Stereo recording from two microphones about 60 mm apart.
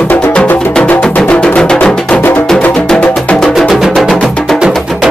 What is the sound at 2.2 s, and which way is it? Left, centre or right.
Music, left.